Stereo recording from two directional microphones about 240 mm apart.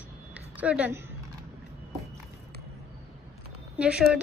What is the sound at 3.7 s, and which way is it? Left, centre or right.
Speech, centre.